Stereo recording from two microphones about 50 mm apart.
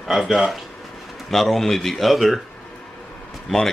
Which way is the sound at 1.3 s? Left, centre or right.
Centre.